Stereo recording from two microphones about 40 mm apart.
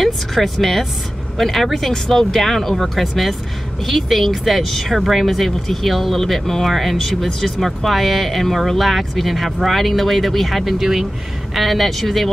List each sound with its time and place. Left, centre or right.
0.0 s speech: centre